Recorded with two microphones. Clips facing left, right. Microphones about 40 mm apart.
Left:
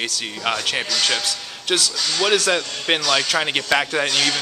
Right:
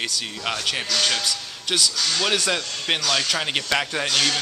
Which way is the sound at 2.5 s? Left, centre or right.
Centre.